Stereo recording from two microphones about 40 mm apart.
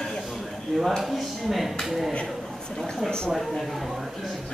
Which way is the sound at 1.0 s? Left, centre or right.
Centre.